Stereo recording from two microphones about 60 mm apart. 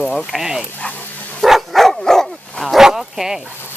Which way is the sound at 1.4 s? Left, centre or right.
Centre.